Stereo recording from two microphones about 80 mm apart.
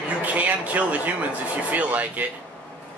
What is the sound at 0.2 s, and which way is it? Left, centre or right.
A man's voice, centre.